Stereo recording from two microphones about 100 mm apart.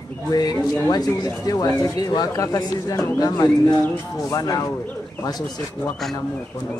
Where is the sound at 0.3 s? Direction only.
40° left (ahead or behind).